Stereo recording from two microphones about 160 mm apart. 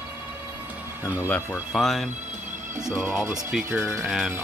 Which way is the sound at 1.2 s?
10° left (ahead or behind).